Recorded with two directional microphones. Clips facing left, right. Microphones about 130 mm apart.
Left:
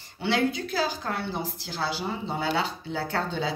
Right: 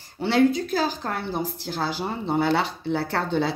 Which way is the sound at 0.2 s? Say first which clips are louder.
Right 6 dB; 40° right (ahead or behind).